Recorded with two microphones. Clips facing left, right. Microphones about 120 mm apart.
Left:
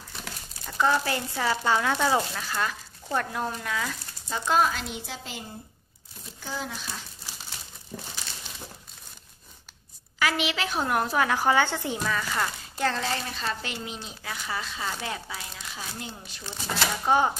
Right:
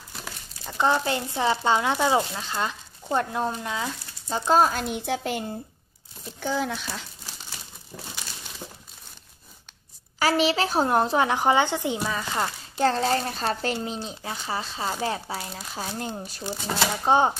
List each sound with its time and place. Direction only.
0.7 s speech: 25° right (ahead or behind); by 4.8 s 40° right (ahead or behind)
4.8 s a woman's voice: 55° right (ahead or behind)
6.4 s speech: 70° right (ahead or behind)
10.1 s a woman's voice: 35° right (ahead or behind)
17.0 s speech: 25° right (ahead or behind)